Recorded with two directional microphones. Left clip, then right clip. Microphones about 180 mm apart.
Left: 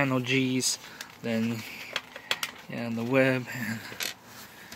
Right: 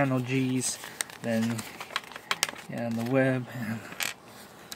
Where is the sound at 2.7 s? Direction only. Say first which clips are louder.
Even; 25° right (ahead or behind).